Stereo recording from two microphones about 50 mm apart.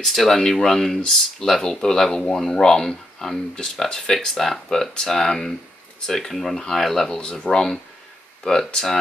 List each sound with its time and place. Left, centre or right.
0.0 s speech: centre
7.1 s speech: centre